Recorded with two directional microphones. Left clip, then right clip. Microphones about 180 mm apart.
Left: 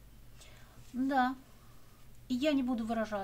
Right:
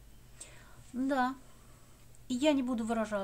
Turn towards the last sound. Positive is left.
turn(degrees=-25)  # may be behind; listen again after turning